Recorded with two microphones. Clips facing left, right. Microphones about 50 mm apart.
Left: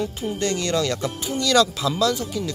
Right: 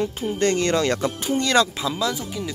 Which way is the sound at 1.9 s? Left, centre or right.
Centre.